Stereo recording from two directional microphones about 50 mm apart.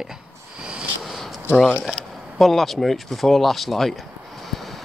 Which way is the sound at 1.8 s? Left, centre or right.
Centre.